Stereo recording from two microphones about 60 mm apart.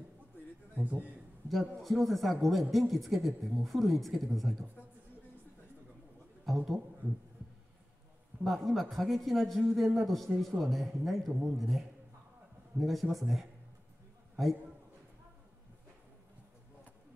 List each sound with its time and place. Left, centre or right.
0.7 s a man's voice: right
1.5 s speech: centre
6.4 s a man's voice: centre
8.5 s speech: centre
13.1 s speech: centre
14.3 s a sound: centre